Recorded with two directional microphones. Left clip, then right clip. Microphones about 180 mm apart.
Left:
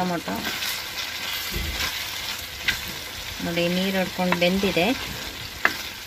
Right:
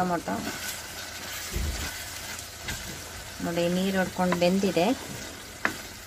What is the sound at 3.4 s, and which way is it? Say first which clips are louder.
Speech: left 3 dB; 5° right (ahead or behind).